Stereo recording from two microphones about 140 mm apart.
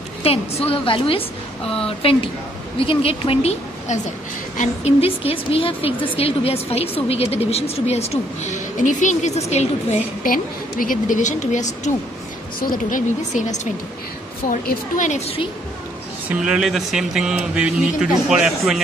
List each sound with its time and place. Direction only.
0.2 s a woman's voice: 45° left (ahead or behind)
2.8 s speech: 40° left (ahead or behind)
10.2 s a woman's voice: 80° left; by 11.6 s 60° left (ahead or behind)
12.5 s a woman's voice: 85° left; by 15.4 s 50° left (ahead or behind)
16.3 s speech: 5° right (ahead or behind)